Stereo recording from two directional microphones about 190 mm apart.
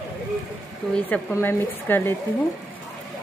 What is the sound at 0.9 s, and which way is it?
Speech, 10° left (ahead or behind).